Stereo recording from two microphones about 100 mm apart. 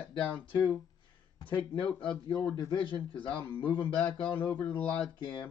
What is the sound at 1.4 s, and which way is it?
Speech, 60° left (ahead or behind).